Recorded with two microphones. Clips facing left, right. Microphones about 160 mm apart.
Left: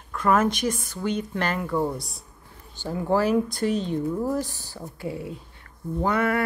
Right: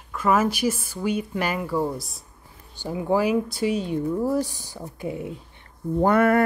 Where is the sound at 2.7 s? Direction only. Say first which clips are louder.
Right 1 dB; 15° right (ahead or behind).